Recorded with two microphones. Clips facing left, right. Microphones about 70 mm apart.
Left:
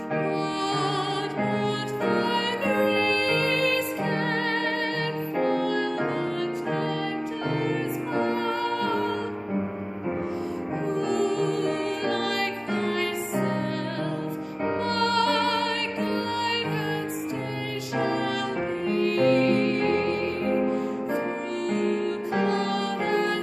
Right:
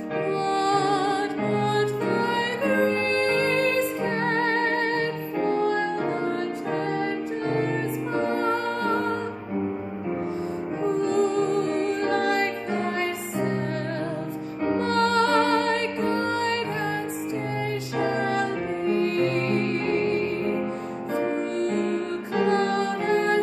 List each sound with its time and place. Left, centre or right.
0.3 s music: right
8.1 s music: right
11.2 s music: right
14.8 s music: right
18.0 s music: right
22.5 s music: right